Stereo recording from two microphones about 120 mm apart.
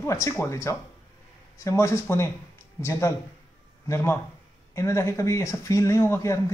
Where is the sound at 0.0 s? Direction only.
25° left (ahead or behind).